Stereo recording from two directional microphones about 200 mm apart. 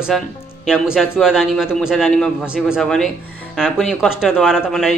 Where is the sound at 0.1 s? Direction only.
5° left (ahead or behind).